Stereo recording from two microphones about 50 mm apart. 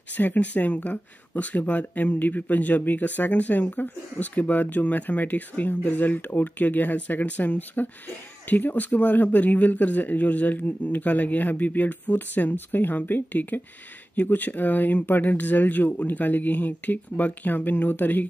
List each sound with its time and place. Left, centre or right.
0.2 s speech: left